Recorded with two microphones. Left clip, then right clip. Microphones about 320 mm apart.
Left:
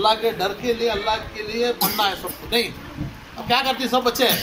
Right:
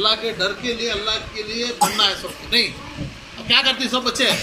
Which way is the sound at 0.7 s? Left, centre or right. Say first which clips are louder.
Left 1 dB; centre.